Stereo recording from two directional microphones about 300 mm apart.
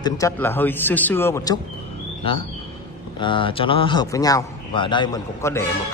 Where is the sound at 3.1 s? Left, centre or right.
Centre.